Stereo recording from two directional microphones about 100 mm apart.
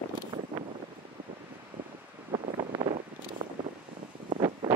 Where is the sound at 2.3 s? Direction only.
65° right (ahead or behind).